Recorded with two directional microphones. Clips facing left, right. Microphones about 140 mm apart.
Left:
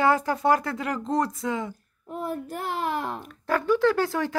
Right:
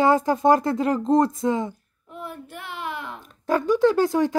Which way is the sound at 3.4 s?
20° right (ahead or behind).